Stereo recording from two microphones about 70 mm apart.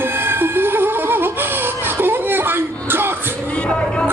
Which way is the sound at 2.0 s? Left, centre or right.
Right.